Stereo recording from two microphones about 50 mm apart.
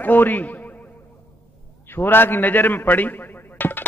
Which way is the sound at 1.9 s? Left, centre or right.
Left.